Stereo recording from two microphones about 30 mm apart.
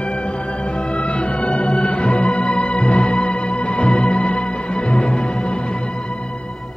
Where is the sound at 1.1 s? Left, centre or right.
Left.